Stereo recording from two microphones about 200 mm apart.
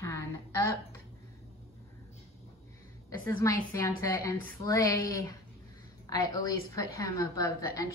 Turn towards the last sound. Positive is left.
turn(degrees=15)  # may be behind; listen again after turning